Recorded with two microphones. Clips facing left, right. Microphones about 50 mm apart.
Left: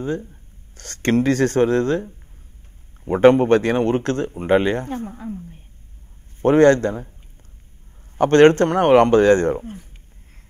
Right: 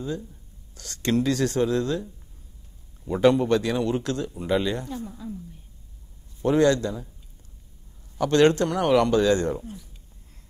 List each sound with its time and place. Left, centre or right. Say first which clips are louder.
0.0 s speech: left 6 dB; left
8.2 s speech: left 7 dB; left